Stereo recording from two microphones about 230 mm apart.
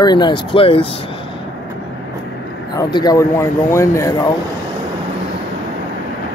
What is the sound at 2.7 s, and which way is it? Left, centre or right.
Speech, centre.